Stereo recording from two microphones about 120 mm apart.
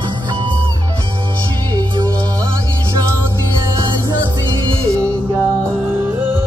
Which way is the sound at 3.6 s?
35° right (ahead or behind).